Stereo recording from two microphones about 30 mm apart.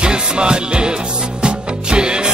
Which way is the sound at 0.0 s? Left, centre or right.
Right.